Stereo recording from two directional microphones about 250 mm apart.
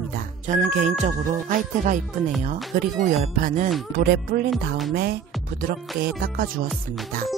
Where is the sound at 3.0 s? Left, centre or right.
Right.